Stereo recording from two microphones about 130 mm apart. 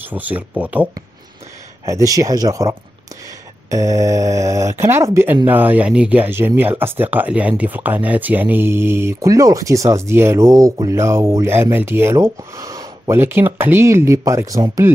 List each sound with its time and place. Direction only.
0.1 s speech: 10° right (ahead or behind)
1.9 s speech: 25° right (ahead or behind)
3.7 s speech: 25° right (ahead or behind)